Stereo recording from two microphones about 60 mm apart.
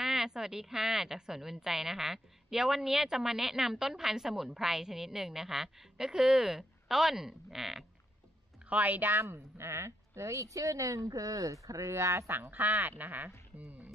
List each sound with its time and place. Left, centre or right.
0.0 s a woman's voice: centre
8.6 s speech: right
9.3 s speech: right
12.4 s speech: right